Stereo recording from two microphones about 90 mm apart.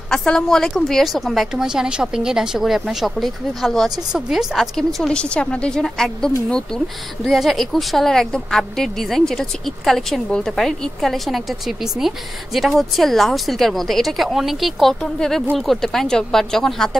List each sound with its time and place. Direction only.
0.1 s a woman's voice: 10° left (ahead or behind)